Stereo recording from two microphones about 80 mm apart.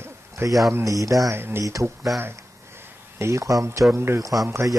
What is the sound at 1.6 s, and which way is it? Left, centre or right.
Speech, right.